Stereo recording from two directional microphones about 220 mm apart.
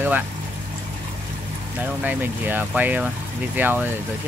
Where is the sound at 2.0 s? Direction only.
10° right (ahead or behind).